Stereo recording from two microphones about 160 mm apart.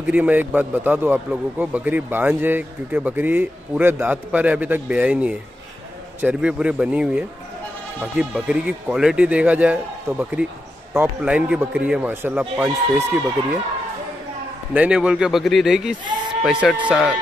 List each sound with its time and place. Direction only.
0.0 s a man's voice: 10° right (ahead or behind)
14.7 s a man's voice: 10° right (ahead or behind)